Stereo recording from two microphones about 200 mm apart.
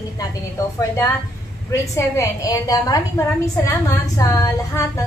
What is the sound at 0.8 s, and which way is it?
A woman's voice, 10° left (ahead or behind).